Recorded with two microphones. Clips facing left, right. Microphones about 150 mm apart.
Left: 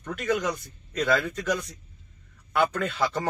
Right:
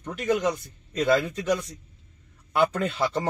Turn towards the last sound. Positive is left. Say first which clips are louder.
# right 1 dB
turn(degrees=-30)  # may be behind; listen again after turning